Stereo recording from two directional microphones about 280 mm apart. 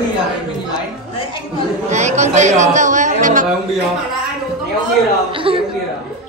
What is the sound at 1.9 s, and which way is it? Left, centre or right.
A woman's voice, right.